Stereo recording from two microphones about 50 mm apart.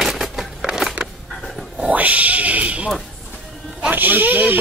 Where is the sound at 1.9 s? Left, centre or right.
Right.